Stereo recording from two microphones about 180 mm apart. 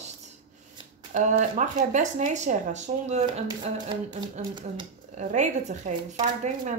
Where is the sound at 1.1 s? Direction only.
45° right (ahead or behind).